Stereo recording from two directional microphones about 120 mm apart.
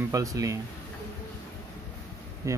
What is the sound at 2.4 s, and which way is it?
Speech, 25° right (ahead or behind).